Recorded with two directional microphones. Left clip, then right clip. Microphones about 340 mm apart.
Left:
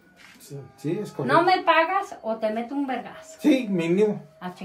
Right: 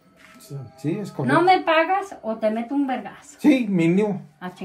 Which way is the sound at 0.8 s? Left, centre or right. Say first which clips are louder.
Right 1 dB; right.